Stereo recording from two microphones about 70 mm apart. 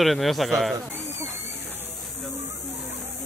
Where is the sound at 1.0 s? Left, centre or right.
Right.